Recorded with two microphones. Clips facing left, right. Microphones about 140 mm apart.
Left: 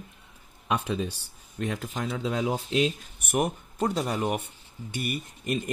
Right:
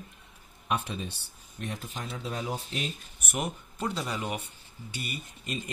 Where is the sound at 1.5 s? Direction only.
90° left.